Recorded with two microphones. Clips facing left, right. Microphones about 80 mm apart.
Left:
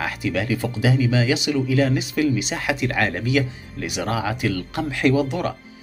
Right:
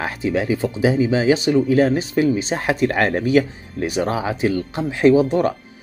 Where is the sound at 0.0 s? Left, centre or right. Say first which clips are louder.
Right 3 dB; right.